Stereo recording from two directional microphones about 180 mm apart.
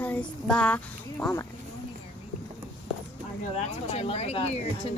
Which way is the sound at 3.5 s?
35° left (ahead or behind).